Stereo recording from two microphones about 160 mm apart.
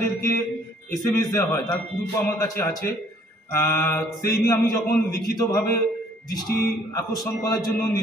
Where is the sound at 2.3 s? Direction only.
20° left (ahead or behind).